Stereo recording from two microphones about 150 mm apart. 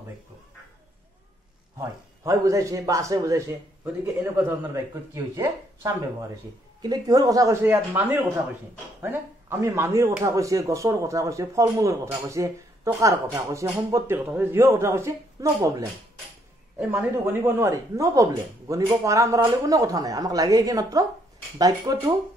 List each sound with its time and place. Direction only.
1.8 s speech: 20° right (ahead or behind)
9.0 s speech: 15° right (ahead or behind)
16.7 s speech: 15° right (ahead or behind)